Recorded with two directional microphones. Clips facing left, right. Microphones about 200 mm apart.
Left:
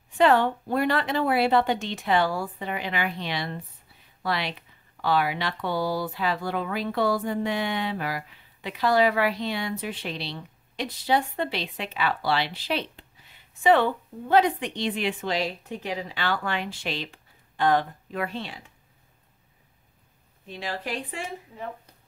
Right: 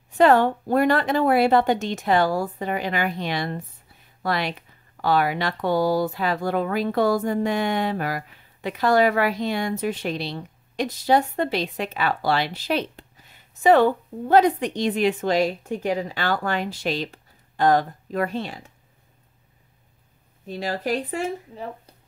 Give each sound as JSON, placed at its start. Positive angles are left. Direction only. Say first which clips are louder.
{"t": 0.2, "sound": "speech", "louder": "right 4 dB", "side_deg": -45}
{"t": 20.4, "sound": "speech", "louder": "right 7 dB", "side_deg": -40}